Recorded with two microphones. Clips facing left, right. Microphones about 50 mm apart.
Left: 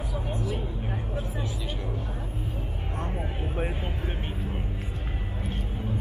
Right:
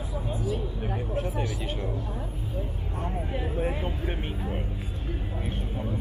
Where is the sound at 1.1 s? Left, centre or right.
Right.